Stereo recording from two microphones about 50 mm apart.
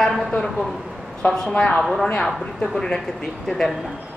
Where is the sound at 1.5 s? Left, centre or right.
Left.